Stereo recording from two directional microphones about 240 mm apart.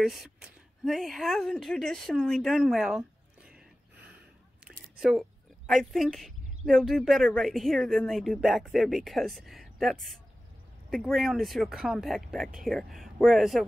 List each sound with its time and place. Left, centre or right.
0.0 s a woman's voice: centre
4.6 s a sound: centre
5.7 s speech: centre